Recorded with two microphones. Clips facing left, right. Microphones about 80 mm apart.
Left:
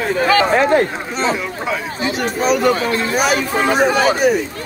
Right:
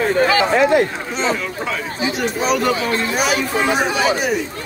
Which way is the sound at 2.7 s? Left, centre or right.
Left.